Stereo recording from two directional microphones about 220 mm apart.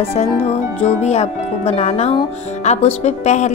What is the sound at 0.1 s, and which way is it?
Speech, 30° left (ahead or behind).